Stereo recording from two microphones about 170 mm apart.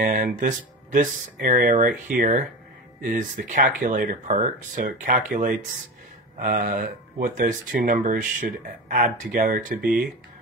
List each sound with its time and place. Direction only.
0.0 s speech: 55° right (ahead or behind)